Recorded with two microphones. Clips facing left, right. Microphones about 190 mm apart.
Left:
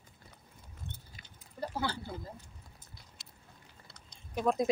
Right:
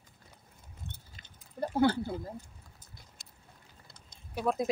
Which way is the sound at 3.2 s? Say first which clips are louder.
Left 1 dB; 50° right (ahead or behind).